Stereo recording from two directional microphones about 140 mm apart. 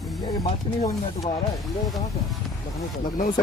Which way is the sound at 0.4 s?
25° left (ahead or behind).